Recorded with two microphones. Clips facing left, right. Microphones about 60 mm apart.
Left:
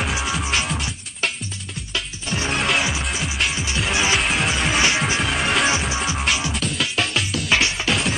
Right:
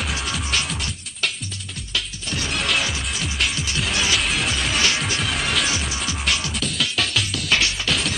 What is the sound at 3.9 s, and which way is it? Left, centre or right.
Music, left.